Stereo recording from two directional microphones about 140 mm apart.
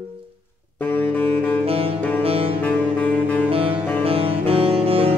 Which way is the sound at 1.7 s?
45° right (ahead or behind).